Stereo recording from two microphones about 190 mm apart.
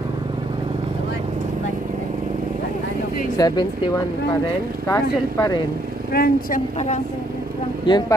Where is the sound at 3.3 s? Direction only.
20° left (ahead or behind).